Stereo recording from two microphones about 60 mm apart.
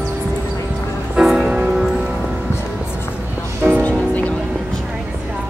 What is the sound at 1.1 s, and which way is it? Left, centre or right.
Music, centre.